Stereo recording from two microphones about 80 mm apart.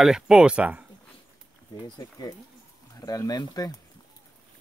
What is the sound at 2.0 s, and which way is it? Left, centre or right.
Speech, left.